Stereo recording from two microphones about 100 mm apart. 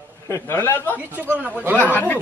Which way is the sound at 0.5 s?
25° left (ahead or behind).